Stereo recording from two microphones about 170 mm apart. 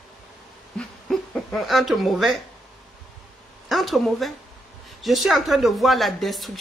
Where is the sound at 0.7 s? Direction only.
Centre (ahead or behind).